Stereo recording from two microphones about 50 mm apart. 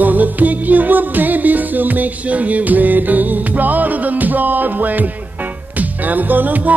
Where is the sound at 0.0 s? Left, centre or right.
Right.